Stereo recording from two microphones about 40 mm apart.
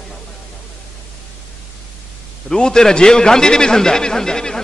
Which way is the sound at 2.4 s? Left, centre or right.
Centre.